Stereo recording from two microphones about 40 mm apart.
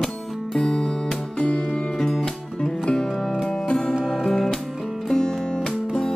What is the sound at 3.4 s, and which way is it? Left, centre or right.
Music, centre.